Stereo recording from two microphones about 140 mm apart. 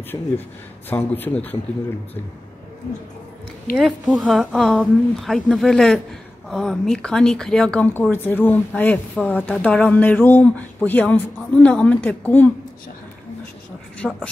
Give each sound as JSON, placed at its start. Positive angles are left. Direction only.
{"t": 0.1, "sound": "speech", "side_deg": 20}
{"t": 3.7, "sound": "a woman's voice", "side_deg": -5}
{"t": 14.0, "sound": "a woman's voice", "side_deg": 0}